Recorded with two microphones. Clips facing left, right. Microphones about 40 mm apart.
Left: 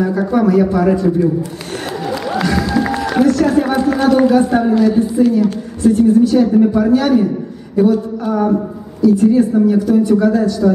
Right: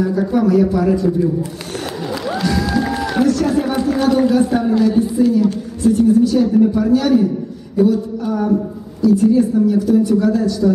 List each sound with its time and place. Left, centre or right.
0.2 s a man's voice: centre
2.3 s music: centre
3.0 s a woman's voice: centre